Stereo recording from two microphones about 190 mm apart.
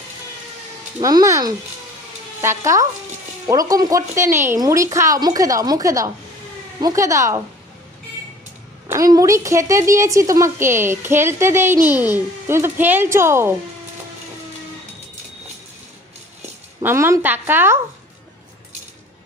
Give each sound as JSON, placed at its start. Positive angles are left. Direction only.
{"t": 1.0, "sound": "a woman's voice", "side_deg": -15}
{"t": 8.9, "sound": "a woman's voice", "side_deg": -15}
{"t": 16.8, "sound": "a woman's voice", "side_deg": -15}